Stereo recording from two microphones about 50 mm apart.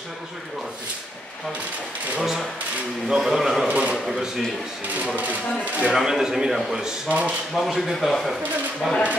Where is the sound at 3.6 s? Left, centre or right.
Right.